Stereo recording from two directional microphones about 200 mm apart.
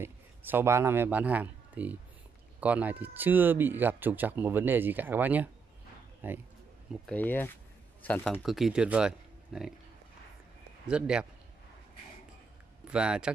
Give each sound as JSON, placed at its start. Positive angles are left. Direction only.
{"t": 0.0, "sound": "speech", "side_deg": -10}
{"t": 6.9, "sound": "speech", "side_deg": 5}
{"t": 10.9, "sound": "speech", "side_deg": -5}
{"t": 12.8, "sound": "speech", "side_deg": -5}